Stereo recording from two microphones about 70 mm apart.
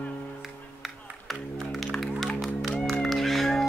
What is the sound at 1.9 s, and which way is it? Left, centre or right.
Music, centre.